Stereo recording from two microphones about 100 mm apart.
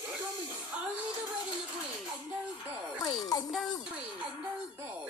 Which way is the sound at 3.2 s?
40° left (ahead or behind).